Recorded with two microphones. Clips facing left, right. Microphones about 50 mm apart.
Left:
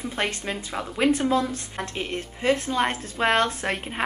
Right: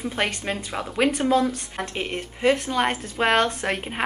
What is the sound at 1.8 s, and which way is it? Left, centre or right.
Speech, right.